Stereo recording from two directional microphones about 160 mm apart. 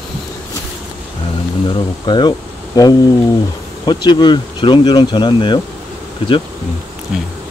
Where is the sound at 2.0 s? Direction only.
25° left (ahead or behind).